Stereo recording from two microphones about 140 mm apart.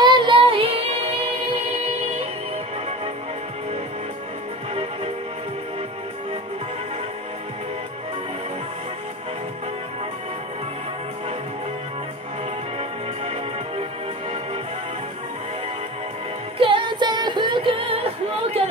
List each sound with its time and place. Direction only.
0.0 s child singing: 35° right (ahead or behind)
13.2 s music: 45° right (ahead or behind)
16.5 s music: 35° right (ahead or behind)